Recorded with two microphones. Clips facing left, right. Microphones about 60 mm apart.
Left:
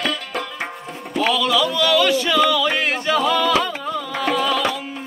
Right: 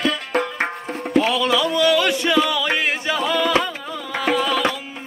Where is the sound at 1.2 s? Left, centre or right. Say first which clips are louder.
Even; right.